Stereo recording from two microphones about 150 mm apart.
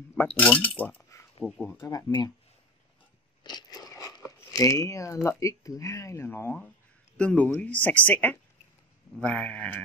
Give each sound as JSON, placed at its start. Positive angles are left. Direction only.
{"t": 0.4, "sound": "speech", "side_deg": 10}
{"t": 3.4, "sound": "biting", "side_deg": 25}
{"t": 4.5, "sound": "speech", "side_deg": 20}